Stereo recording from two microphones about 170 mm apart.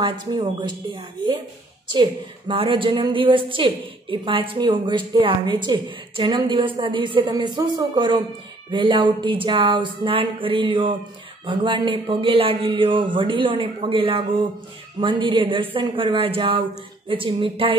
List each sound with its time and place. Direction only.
0.0 s a woman's voice: 25° right (ahead or behind)